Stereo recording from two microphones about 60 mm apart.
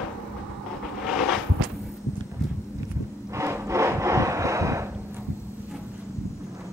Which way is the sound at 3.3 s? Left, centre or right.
Right.